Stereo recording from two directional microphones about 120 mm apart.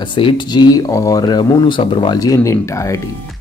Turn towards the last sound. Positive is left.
turn(degrees=25)  # may be behind; listen again after turning